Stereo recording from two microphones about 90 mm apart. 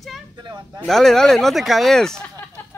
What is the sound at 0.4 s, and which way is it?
Speech, 55° right (ahead or behind).